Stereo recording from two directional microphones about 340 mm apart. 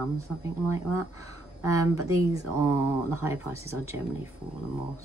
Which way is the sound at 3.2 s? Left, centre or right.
Centre.